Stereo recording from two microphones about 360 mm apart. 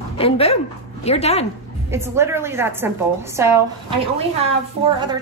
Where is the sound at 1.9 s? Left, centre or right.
Centre.